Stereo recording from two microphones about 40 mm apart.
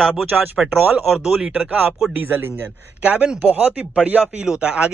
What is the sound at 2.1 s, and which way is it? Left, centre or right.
Speech, right.